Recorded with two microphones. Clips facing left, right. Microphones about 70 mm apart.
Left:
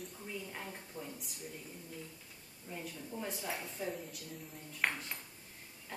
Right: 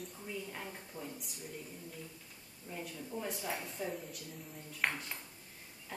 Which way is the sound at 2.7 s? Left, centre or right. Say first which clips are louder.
Right 1 dB; centre.